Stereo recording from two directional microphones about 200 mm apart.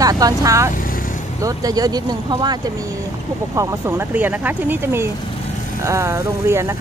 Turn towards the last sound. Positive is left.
turn(degrees=-15)  # may be behind; listen again after turning